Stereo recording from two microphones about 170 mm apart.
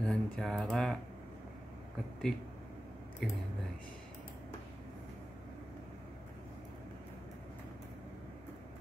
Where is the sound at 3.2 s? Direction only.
5° left (ahead or behind).